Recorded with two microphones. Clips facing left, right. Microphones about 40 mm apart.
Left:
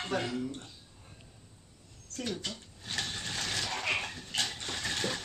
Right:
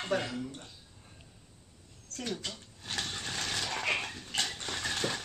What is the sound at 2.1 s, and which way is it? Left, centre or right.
Speech, centre.